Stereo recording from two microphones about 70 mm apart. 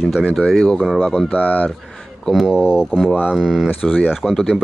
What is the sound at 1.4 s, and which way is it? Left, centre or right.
Speech, left.